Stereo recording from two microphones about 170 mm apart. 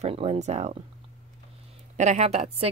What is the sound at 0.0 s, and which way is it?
Speech, 35° right (ahead or behind).